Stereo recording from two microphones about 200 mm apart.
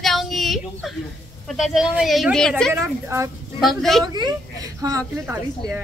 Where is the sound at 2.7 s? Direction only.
15° right (ahead or behind).